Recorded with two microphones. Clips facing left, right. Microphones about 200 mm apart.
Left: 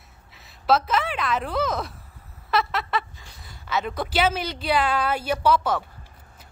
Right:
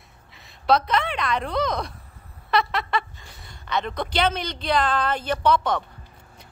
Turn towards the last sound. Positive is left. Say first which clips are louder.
# even
turn(degrees=5)  # may be behind; listen again after turning